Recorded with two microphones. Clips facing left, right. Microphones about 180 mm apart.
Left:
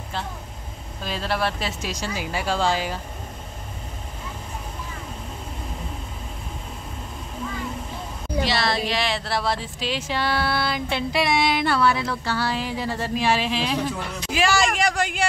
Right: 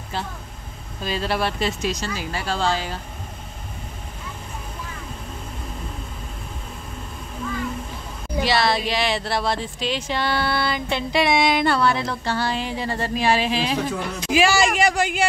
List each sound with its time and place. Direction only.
1.0 s speech: centre (ahead or behind)
8.4 s speech: centre (ahead or behind)